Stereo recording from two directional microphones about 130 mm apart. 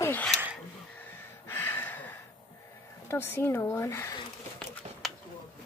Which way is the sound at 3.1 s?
15° left (ahead or behind).